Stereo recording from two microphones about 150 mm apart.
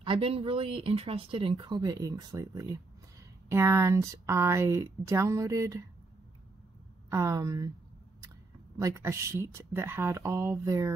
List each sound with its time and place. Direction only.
0.0 s speech: 35° right (ahead or behind); by 5.9 s 20° right (ahead or behind)
7.1 s speech: 20° right (ahead or behind)
8.7 s speech: 20° right (ahead or behind)